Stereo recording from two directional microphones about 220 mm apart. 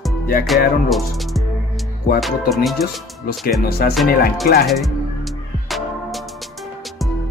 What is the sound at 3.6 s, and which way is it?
Speech, 45° left (ahead or behind).